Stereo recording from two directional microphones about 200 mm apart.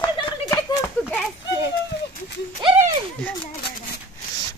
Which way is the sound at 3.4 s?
25° left (ahead or behind).